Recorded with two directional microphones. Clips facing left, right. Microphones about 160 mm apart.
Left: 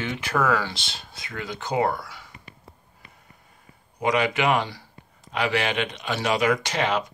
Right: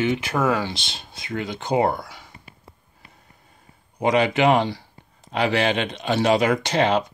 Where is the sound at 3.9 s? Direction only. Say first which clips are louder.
Right 4 dB; 30° right (ahead or behind).